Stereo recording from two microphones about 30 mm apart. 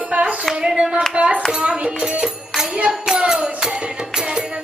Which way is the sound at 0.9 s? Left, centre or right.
Right.